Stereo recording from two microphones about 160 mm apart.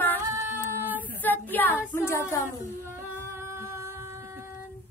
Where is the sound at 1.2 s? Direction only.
10° left (ahead or behind).